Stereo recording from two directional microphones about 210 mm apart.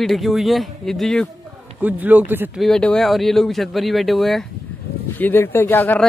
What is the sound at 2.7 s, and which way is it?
Speech, 5° left (ahead or behind).